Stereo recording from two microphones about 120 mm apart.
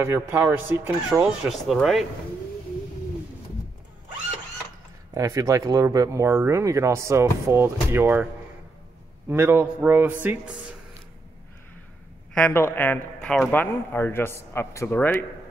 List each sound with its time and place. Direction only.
0.0 s speech: 20° right (ahead or behind)
1.2 s speech: centre (ahead or behind)
5.1 s speech: 25° right (ahead or behind)
9.3 s speech: 20° right (ahead or behind)
12.4 s a man's voice: 15° left (ahead or behind)